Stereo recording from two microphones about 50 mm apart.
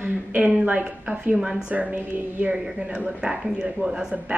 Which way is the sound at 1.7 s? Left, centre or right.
Right.